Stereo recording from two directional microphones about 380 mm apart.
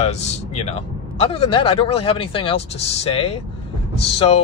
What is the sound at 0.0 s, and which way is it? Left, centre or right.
Speech, centre.